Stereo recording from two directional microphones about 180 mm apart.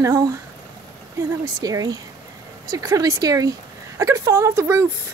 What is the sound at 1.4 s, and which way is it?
Speech, 20° right (ahead or behind).